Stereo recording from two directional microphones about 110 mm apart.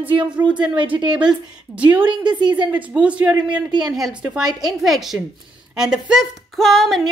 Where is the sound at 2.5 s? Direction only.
10° right (ahead or behind).